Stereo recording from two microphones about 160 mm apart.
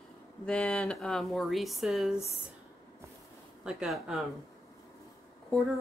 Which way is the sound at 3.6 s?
5° right (ahead or behind).